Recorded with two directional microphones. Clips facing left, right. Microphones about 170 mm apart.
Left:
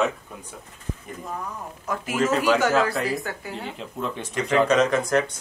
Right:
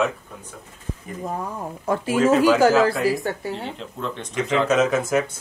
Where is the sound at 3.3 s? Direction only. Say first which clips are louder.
Right 5 dB; 30° right (ahead or behind).